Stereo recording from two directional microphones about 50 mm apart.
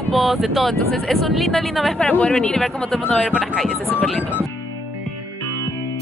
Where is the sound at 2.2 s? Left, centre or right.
Centre.